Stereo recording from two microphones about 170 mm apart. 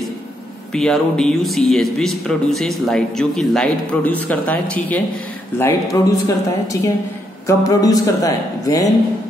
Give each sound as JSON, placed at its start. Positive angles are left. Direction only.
{"t": 0.7, "sound": "speech", "side_deg": 5}